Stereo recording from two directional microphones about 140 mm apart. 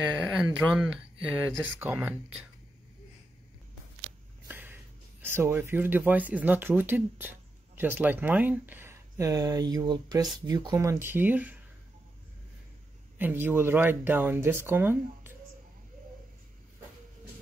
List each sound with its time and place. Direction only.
0.1 s speech: 5° right (ahead or behind)
4.5 s a sound: 15° right (ahead or behind)
5.2 s speech: 15° right (ahead or behind)
13.2 s speech: 15° right (ahead or behind)